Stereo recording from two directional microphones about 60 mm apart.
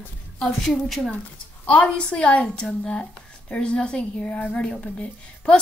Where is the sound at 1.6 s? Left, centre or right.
Centre.